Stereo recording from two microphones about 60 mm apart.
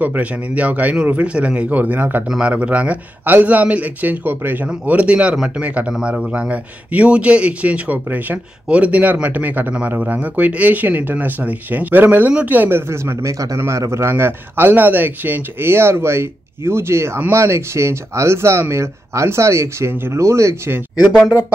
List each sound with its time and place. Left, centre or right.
0.0 s speech: right
2.2 s speech: centre; by 4.6 s right
4.8 s speech: right
5.9 s a man's voice: centre
6.3 s speech: right
12.8 s speech: right
13.6 s a man's voice: right